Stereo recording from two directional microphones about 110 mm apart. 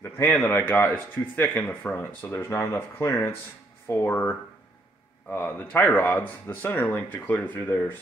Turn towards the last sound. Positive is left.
turn(degrees=20)  # may be behind; listen again after turning